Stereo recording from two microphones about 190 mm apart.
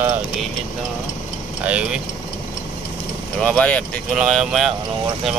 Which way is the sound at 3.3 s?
5° left (ahead or behind).